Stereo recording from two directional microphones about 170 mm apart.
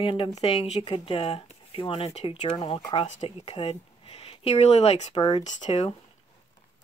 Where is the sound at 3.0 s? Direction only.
45° left (ahead or behind).